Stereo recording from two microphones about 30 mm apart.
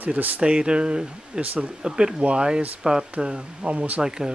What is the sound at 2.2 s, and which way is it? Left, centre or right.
A man's voice, right.